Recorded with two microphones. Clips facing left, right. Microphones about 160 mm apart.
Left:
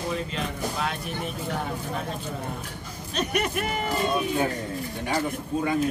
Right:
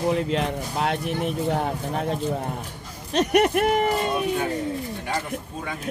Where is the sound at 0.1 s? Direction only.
65° right (ahead or behind).